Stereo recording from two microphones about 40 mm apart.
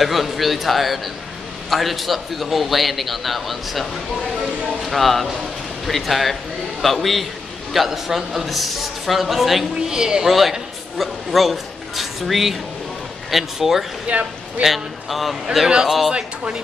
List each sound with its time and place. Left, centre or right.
0.0 s a man's voice: centre
4.8 s a man's voice: centre
9.8 s speech: centre
11.0 s a man's voice: centre
14.1 s speech: right
14.6 s a man's voice: centre
16.1 s speech: right